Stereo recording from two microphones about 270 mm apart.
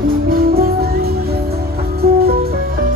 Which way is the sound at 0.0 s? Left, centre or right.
Right.